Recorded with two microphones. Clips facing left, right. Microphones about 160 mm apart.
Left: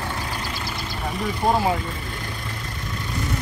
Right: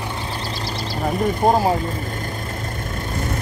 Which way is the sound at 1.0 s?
50° right (ahead or behind).